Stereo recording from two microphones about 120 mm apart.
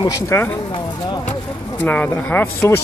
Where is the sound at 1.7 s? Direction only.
15° left (ahead or behind).